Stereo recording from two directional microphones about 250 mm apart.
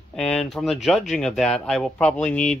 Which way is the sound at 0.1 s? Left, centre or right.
Centre.